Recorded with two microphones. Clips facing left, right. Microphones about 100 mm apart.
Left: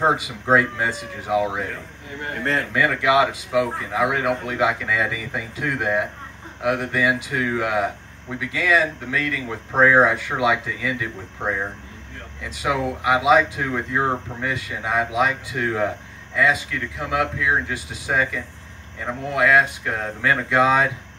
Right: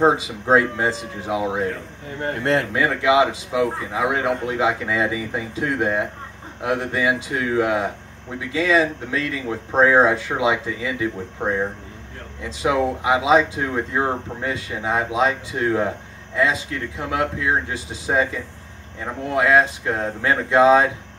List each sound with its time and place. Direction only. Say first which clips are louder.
0.0 s speech: right 3 dB; 25° right (ahead or behind)
17.1 s speech: even; 25° right (ahead or behind)